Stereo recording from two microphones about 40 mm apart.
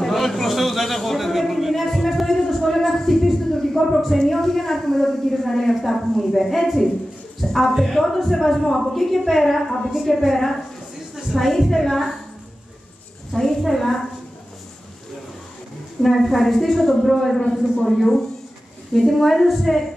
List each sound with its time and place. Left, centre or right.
0.0 s a sound: centre
4.3 s a woman's voice: centre
13.3 s a woman's voice: centre
16.0 s a woman's voice: centre
17.4 s a man's voice: centre
17.8 s a woman's voice: centre